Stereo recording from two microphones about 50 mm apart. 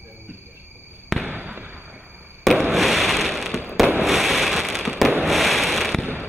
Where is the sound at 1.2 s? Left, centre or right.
Right.